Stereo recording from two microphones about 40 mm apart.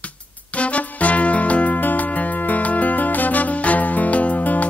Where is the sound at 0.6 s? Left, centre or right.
Left.